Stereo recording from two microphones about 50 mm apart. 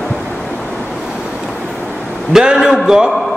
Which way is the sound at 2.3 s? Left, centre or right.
Centre.